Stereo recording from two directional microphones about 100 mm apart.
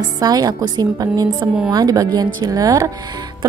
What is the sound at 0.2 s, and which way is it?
A woman's voice, 40° right (ahead or behind).